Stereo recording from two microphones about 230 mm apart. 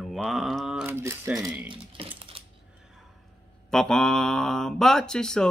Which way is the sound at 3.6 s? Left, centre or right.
Centre.